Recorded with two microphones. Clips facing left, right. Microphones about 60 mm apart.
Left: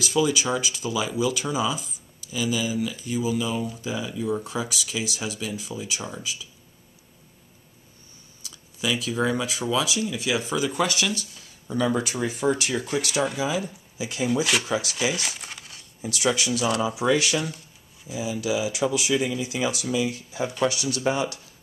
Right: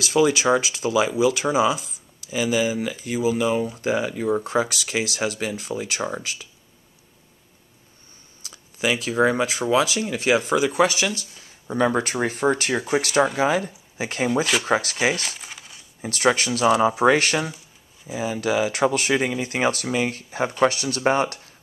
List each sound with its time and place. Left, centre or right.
0.1 s speech: right
1.5 s speech: centre
2.3 s speech: right
3.3 s speech: right
8.5 s a sound: right
9.1 s speech: right
10.6 s speech: right
11.6 s speech: right
15.3 s coin: centre
16.0 s speech: right